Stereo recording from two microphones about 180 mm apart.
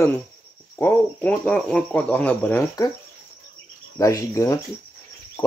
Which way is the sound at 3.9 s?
15° left (ahead or behind).